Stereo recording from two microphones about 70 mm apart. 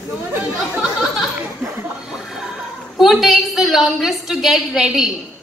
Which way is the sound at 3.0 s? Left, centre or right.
Centre.